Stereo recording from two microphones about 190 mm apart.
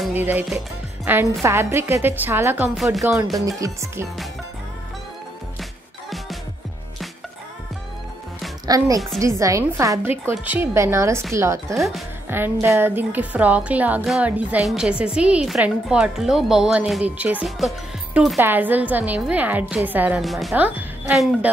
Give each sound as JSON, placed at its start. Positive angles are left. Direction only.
{"t": 0.0, "sound": "music", "side_deg": -10}
{"t": 1.1, "sound": "speech", "side_deg": -10}
{"t": 5.6, "sound": "music", "side_deg": 0}
{"t": 8.6, "sound": "speech", "side_deg": -20}
{"t": 11.7, "sound": "speech", "side_deg": 0}
{"t": 12.3, "sound": "speech", "side_deg": -10}